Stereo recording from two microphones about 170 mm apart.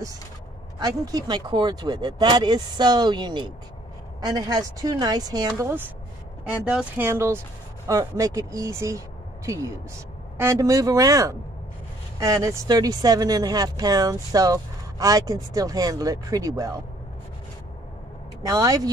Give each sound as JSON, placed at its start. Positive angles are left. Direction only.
{"t": 0.7, "sound": "speech", "side_deg": -25}
{"t": 10.3, "sound": "speech", "side_deg": -15}
{"t": 18.4, "sound": "speech", "side_deg": -20}